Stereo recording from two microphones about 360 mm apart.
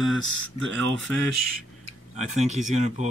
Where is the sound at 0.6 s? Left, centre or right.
Right.